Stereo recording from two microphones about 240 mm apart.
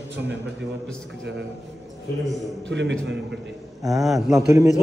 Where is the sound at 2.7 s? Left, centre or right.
Right.